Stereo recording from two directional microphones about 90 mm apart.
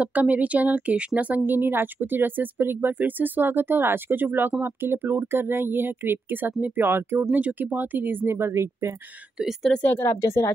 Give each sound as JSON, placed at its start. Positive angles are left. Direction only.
{"t": 0.0, "sound": "speech", "side_deg": -15}
{"t": 9.4, "sound": "speech", "side_deg": 0}
{"t": 9.9, "sound": "speech", "side_deg": 30}